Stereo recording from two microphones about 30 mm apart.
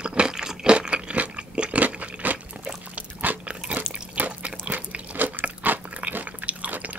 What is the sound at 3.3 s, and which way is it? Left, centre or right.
Biting, right.